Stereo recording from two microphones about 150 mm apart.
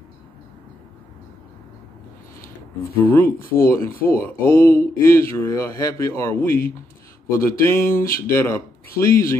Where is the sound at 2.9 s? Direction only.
15° left (ahead or behind).